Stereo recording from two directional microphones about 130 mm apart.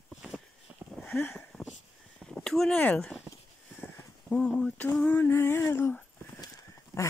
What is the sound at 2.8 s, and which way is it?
Speech, 10° left (ahead or behind).